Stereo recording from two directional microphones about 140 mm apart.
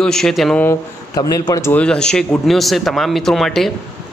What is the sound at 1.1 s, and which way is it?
Speech, 25° left (ahead or behind).